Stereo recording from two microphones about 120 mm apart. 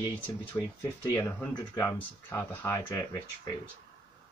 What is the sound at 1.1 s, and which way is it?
Speech, 15° left (ahead or behind).